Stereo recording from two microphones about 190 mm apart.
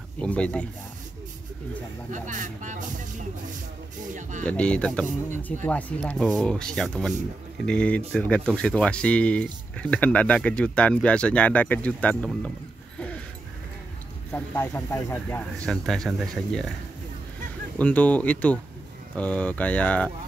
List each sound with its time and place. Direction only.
0.2 s speech: 5° left (ahead or behind)
2.0 s speech: 40° right (ahead or behind)
4.1 s speech: 40° right (ahead or behind)
4.5 s speech: 5° left (ahead or behind)
14.3 s speech: 10° left (ahead or behind)
17.7 s speech: 10° left (ahead or behind)